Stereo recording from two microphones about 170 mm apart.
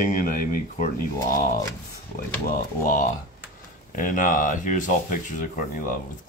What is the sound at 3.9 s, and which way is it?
Speech, 55° left (ahead or behind).